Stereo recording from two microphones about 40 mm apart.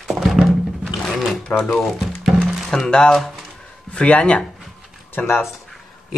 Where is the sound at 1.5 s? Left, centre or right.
Left.